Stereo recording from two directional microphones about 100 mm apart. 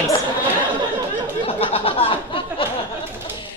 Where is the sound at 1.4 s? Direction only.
70° left (ahead or behind).